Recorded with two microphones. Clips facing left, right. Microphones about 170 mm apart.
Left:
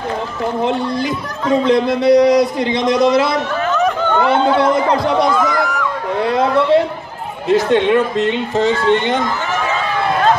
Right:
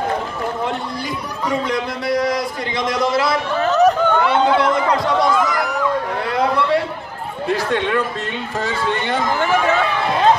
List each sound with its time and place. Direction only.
1.7 s speech: 25° left (ahead or behind)
3.6 s a sound: 35° right (ahead or behind)
4.1 s chatter: 20° left (ahead or behind)
4.6 s speech: 25° left (ahead or behind)
6.2 s a sound: 25° left (ahead or behind)
7.4 s speech: 25° left (ahead or behind)